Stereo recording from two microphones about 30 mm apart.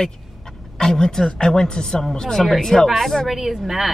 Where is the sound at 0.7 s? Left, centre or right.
Left.